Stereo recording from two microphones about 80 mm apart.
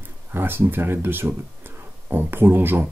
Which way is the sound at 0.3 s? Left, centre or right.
Right.